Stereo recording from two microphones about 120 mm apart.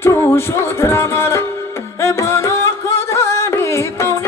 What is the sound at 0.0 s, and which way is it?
Music, 25° left (ahead or behind).